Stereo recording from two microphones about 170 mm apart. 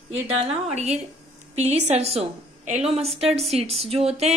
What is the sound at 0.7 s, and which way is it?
A woman's voice, 40° right (ahead or behind).